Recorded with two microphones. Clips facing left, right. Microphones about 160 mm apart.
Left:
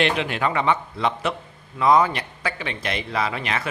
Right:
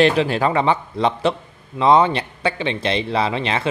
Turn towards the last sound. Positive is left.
turn(degrees=-25)  # may be behind; listen again after turning